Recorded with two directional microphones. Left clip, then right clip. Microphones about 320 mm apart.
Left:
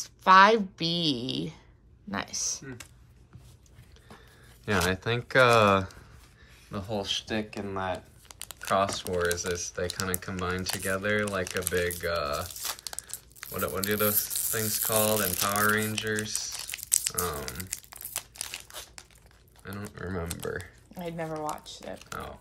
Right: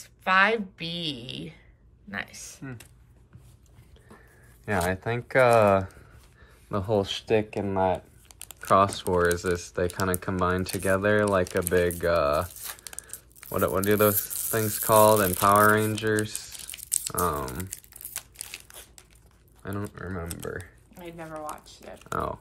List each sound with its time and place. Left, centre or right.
0.0 s a woman's voice: centre
4.6 s speech: centre
6.7 s speech: centre
8.5 s speech: centre
13.5 s speech: centre
16.7 s crumpling: centre
19.6 s speech: centre
21.0 s speech: left